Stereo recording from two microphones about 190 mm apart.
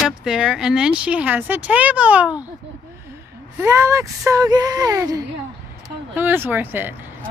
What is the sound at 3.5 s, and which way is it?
Speech, 15° right (ahead or behind).